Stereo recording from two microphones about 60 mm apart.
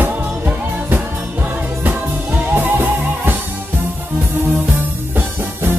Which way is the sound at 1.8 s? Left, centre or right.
Right.